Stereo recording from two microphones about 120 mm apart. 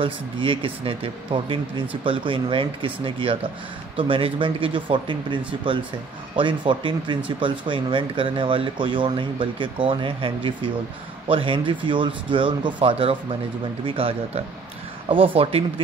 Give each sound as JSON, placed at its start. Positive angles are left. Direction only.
{"t": 0.0, "sound": "speech", "side_deg": -45}